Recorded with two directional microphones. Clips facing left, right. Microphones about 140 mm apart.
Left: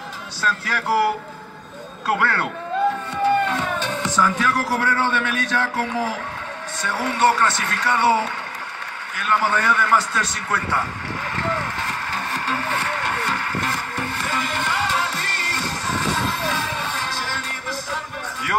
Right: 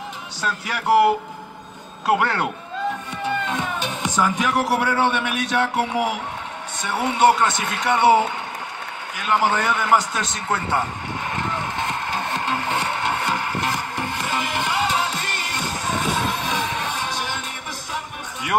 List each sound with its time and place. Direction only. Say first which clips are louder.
0.4 s music: left 2 dB; 15° right (ahead or behind)
2.0 s a man's voice: right 2 dB; 20° right (ahead or behind)
3.4 s a man's voice: left 2 dB; 15° right (ahead or behind)
11.3 s vehicle: left 2 dB; 20° right (ahead or behind)